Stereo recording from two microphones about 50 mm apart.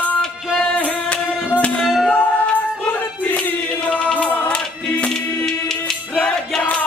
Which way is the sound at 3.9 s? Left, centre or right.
Left.